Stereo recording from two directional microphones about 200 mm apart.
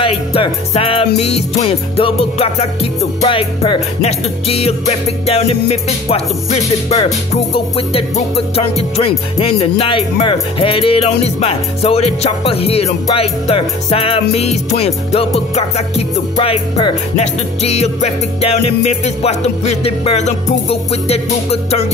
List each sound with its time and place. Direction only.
0.0 s music: 25° left (ahead or behind)